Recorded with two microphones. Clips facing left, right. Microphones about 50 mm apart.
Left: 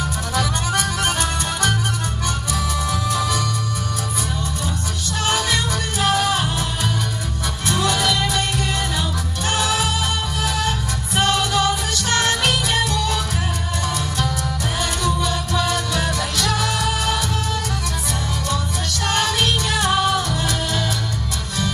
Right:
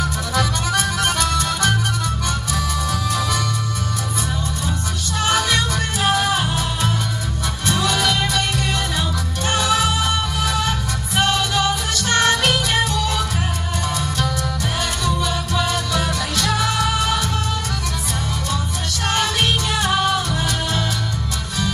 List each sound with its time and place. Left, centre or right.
0.4 s music: left
5.9 s music: centre
8.3 s music: centre
12.1 s music: right
16.0 s music: centre
19.0 s music: centre